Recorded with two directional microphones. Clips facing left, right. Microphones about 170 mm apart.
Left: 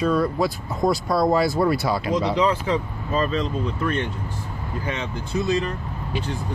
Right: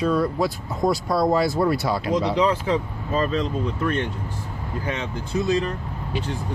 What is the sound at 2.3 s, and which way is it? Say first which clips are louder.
Speech: even; 50° right (ahead or behind).